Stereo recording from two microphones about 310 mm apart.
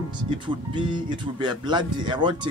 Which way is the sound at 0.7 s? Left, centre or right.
Centre.